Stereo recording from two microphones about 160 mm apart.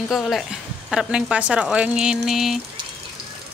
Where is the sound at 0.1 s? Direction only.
Centre (ahead or behind).